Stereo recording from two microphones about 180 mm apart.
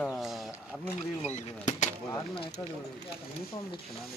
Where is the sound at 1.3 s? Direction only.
40° left (ahead or behind).